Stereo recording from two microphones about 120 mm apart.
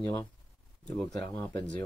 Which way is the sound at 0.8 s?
10° left (ahead or behind).